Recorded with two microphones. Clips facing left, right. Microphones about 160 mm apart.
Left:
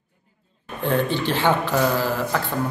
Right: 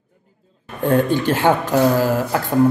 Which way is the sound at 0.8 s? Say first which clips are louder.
Right 5 dB; 45° right (ahead or behind).